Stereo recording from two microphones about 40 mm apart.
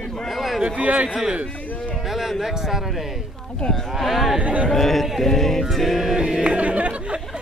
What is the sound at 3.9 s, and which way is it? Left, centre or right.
Speech, centre.